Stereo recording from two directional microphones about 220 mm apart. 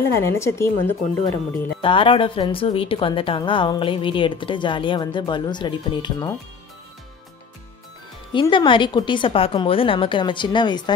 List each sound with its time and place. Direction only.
0.0 s a woman's voice: 10° left (ahead or behind)
1.8 s a woman's voice: 25° left (ahead or behind)
8.3 s a woman's voice: 20° left (ahead or behind)